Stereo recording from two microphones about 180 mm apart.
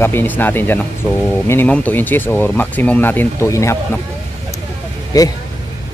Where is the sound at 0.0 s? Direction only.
10° left (ahead or behind).